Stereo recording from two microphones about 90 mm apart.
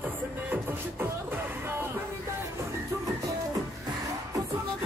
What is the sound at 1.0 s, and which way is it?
Music, 25° right (ahead or behind).